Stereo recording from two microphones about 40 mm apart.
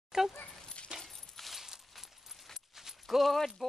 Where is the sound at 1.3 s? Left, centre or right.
Centre.